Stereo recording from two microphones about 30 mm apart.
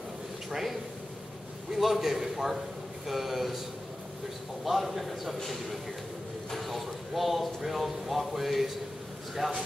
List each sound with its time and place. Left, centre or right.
0.5 s a man's voice: centre
4.6 s speech: centre
6.5 s speech: centre
9.4 s a man's voice: right